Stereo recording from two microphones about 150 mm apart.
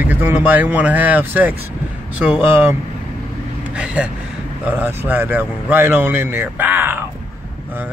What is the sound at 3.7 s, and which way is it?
A man's voice, 5° right (ahead or behind).